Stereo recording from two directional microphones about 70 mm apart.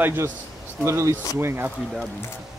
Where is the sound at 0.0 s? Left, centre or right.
Right.